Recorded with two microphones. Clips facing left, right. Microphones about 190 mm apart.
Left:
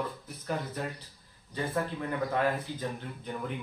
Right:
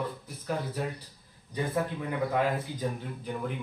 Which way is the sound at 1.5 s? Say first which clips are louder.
Right 2 dB; 15° right (ahead or behind).